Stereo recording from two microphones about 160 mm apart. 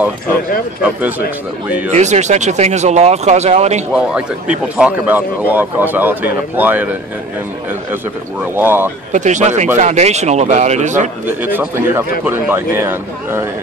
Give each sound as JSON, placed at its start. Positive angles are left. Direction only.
{"t": 1.9, "sound": "speech", "side_deg": -45}
{"t": 3.9, "sound": "a man's voice", "side_deg": -5}
{"t": 8.5, "sound": "a man's voice", "side_deg": -15}
{"t": 9.1, "sound": "speech", "side_deg": -50}
{"t": 11.2, "sound": "a man's voice", "side_deg": -10}